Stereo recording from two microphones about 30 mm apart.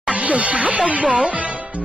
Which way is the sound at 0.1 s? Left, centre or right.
Right.